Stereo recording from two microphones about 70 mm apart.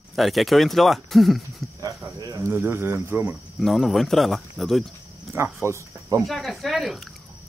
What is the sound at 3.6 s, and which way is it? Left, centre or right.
Speech, centre.